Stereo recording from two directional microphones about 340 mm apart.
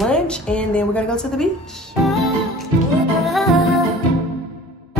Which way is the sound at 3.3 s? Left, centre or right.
Centre.